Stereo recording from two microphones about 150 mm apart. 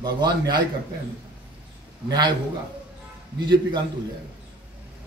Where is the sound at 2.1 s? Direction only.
30° right (ahead or behind).